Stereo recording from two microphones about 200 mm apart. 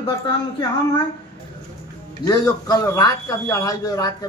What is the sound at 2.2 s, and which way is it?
A man's voice, 20° left (ahead or behind).